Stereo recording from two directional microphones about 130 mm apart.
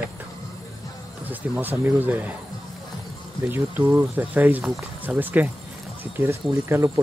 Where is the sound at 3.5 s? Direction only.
20° right (ahead or behind).